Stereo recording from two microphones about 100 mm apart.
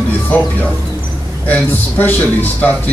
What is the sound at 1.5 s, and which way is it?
A man's voice, 20° left (ahead or behind).